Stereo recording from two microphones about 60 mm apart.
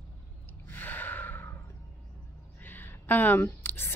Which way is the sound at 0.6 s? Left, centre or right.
Left.